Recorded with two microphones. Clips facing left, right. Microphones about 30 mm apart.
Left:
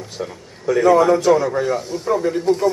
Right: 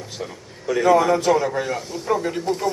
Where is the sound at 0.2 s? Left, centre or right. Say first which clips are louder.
Left 4 dB; left.